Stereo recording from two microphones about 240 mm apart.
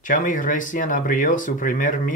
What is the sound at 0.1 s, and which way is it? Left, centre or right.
Speech, left.